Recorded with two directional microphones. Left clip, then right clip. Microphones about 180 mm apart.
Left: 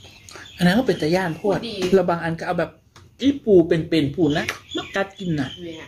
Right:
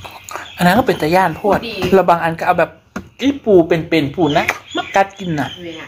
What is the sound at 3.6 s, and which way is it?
Speech, centre (ahead or behind).